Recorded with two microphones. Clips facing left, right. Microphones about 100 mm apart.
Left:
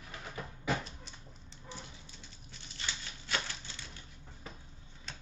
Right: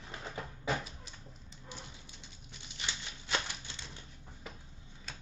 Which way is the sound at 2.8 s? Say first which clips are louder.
Even; 20° right (ahead or behind).